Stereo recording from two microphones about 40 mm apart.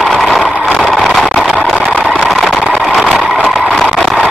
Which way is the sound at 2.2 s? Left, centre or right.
Centre.